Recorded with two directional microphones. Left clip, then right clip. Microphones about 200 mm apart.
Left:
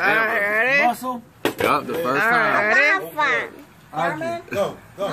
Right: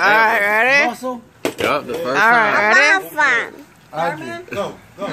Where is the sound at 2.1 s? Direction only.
25° right (ahead or behind).